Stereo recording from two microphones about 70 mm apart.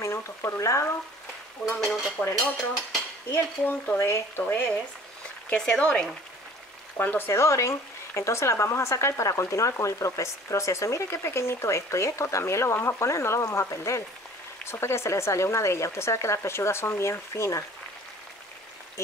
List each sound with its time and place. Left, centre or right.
0.0 s speech: left
1.7 s stir: centre
2.2 s speech: centre
3.3 s cutlery: left
4.0 s speech: left
5.5 s speech: centre
7.0 s cutlery: left
7.2 s speech: left